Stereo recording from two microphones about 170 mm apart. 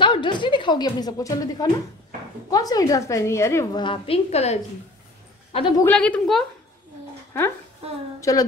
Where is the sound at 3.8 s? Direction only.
30° left (ahead or behind).